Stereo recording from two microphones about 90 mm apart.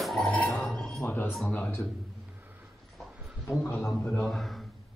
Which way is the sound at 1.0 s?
20° left (ahead or behind).